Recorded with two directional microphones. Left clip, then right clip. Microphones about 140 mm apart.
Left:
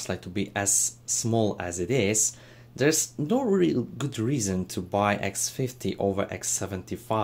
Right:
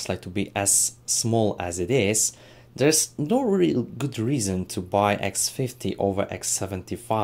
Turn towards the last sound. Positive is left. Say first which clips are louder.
# right 2 dB
turn(degrees=-15)  # may be behind; listen again after turning